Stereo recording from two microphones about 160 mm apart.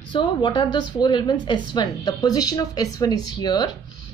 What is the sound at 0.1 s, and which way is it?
Speech, 30° left (ahead or behind).